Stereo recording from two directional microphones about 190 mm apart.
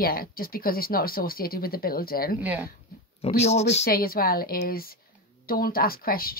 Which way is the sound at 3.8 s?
50° left (ahead or behind).